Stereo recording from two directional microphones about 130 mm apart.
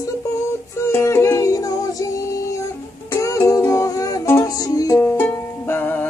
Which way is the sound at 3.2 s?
25° left (ahead or behind).